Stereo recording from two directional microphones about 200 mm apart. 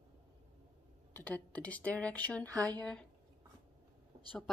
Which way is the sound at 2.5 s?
15° right (ahead or behind).